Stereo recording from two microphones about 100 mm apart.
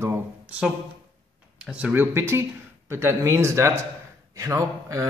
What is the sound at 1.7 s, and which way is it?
A man's voice, 15° right (ahead or behind).